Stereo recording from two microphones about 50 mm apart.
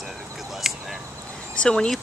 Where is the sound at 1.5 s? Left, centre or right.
Left.